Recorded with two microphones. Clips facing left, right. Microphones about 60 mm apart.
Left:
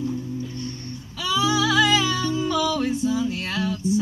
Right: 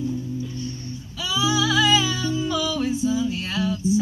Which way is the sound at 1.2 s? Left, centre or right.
Left.